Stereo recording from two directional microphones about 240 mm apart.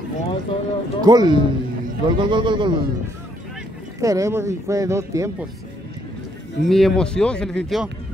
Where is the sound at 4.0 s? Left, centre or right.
Centre.